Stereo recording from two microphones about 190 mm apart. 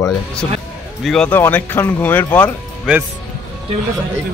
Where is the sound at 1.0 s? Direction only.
5° left (ahead or behind).